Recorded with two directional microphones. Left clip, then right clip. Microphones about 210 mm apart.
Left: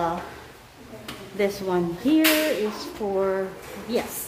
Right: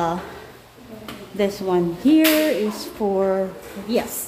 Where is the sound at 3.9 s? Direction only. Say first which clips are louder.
Right 4 dB; 15° right (ahead or behind).